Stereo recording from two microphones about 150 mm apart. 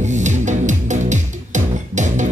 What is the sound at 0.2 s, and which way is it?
Music, 55° right (ahead or behind).